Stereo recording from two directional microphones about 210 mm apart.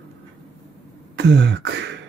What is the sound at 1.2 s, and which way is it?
Beatboxing, 55° right (ahead or behind).